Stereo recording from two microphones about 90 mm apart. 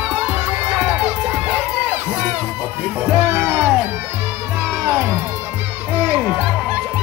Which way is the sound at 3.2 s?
25° right (ahead or behind).